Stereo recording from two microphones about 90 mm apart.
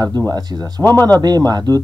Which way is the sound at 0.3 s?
50° right (ahead or behind).